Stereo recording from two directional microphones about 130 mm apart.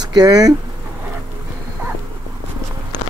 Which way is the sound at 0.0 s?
30° right (ahead or behind).